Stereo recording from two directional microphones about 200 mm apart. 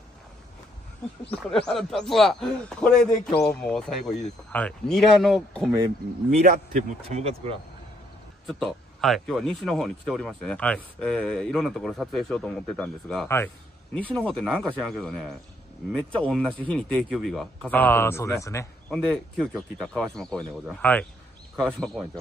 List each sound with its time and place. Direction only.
1.5 s speech: centre (ahead or behind)
6.3 s speech: 35° right (ahead or behind)
8.5 s speech: centre (ahead or behind)
18.9 s speech: centre (ahead or behind)